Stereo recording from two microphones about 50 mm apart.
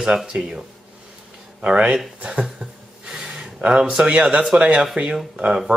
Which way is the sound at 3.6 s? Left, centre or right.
Right.